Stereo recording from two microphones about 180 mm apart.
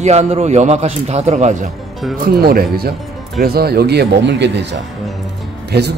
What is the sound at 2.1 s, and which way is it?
Speech, 55° right (ahead or behind).